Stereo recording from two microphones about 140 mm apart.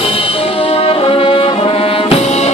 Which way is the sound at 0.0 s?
45° left (ahead or behind).